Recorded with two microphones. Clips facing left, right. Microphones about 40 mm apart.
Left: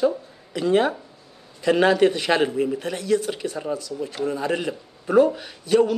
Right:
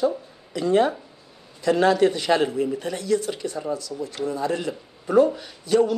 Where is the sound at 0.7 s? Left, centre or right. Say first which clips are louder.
Even; centre.